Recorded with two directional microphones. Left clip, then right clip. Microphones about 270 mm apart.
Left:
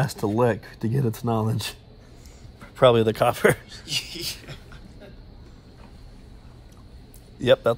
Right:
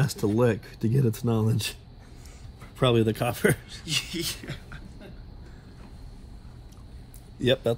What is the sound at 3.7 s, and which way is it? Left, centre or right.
A man's voice, centre.